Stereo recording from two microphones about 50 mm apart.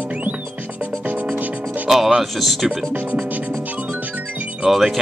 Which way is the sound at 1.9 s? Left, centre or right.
Centre.